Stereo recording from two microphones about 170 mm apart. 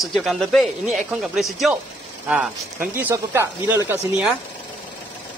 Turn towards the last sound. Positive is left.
turn(degrees=-10)  # may be behind; listen again after turning